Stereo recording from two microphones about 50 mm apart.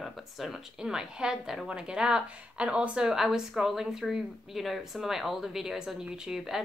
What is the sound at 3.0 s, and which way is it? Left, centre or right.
Speech, centre.